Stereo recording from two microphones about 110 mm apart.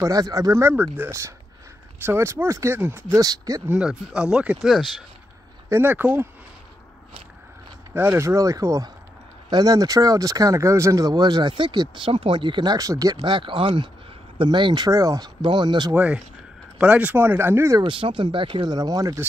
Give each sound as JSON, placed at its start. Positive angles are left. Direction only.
{"t": 0.0, "sound": "speech", "side_deg": -30}
{"t": 3.2, "sound": "speech", "side_deg": -35}
{"t": 3.6, "sound": "speech", "side_deg": -10}
{"t": 5.7, "sound": "speech", "side_deg": -20}
{"t": 7.9, "sound": "speech", "side_deg": -20}
{"t": 14.9, "sound": "speech", "side_deg": -30}
{"t": 15.9, "sound": "speech", "side_deg": -10}
{"t": 17.7, "sound": "speech", "side_deg": -50}